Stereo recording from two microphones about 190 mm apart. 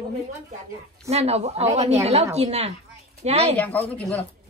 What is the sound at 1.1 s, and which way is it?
Speech, 35° right (ahead or behind).